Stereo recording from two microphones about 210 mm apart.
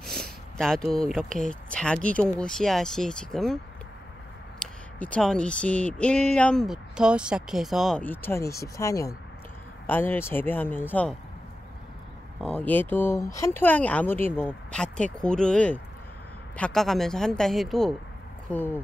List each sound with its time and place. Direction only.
0.0 s a sound: centre (ahead or behind)
0.9 s speech: centre (ahead or behind)
4.6 s speech: 5° left (ahead or behind)
12.4 s speech: 5° left (ahead or behind)